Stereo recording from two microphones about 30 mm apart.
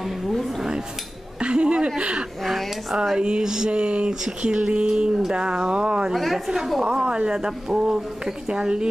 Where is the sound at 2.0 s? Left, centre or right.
Right.